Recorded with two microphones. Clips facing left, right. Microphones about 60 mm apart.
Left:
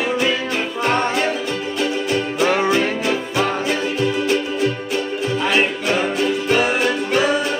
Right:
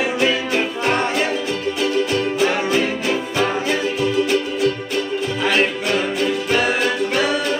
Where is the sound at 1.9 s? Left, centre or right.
Centre.